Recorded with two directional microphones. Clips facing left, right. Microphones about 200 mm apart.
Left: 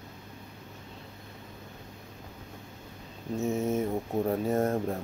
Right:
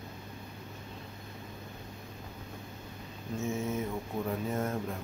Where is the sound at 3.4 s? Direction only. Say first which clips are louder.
Left 5 dB; 40° left (ahead or behind).